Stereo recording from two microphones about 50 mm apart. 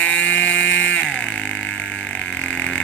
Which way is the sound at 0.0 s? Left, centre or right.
Left.